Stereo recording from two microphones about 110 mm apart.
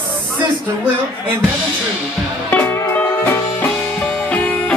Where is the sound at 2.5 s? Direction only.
15° left (ahead or behind).